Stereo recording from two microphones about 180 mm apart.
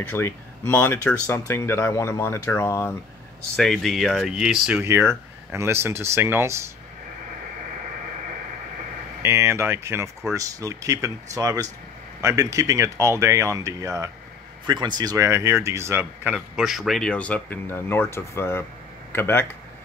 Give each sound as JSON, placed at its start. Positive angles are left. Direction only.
{"t": 0.1, "sound": "speech", "side_deg": 10}
{"t": 3.5, "sound": "speech", "side_deg": 0}
{"t": 9.2, "sound": "speech", "side_deg": -15}